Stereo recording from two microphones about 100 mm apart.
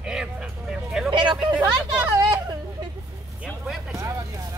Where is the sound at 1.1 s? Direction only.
55° right (ahead or behind).